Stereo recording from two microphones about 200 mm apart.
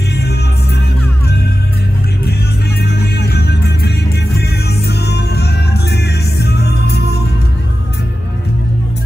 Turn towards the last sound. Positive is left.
turn(degrees=55)  # may be behind; listen again after turning